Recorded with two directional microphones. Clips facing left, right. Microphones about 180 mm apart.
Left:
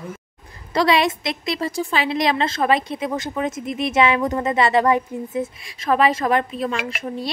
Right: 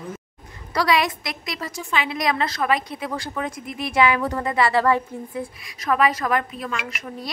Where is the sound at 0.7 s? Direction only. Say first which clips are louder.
Left 3 dB; 25° left (ahead or behind).